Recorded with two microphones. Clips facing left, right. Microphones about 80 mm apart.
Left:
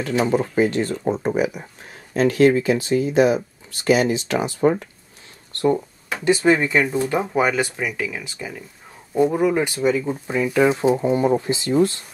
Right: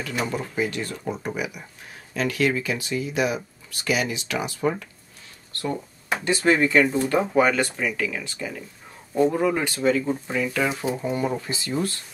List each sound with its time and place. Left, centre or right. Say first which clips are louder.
0.3 s speech: left 8 dB; left
6.2 s speech: left 4 dB; centre